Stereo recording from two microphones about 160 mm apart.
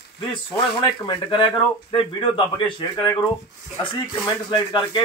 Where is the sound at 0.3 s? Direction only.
30° left (ahead or behind).